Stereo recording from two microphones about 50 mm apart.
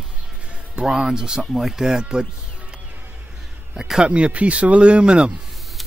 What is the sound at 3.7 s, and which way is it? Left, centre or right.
Speech, centre.